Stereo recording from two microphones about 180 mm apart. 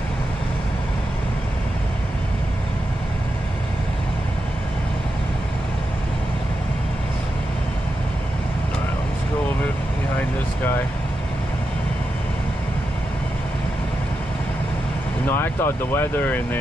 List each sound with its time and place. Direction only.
10.1 s vehicle: 10° left (ahead or behind)
15.2 s speech: 10° left (ahead or behind)